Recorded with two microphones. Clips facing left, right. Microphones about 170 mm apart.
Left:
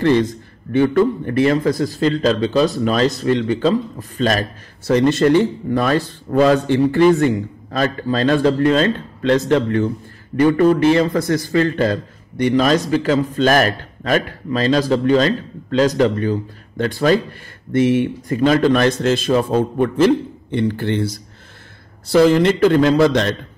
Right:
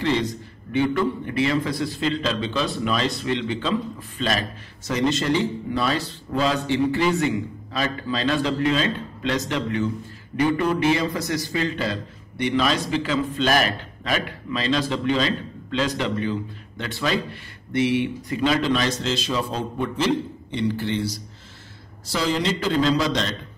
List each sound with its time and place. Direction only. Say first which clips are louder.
0.0 s a man's voice: left 8 dB; 50° left (ahead or behind)